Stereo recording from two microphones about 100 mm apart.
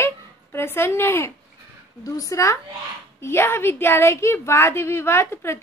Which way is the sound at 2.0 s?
35° left (ahead or behind).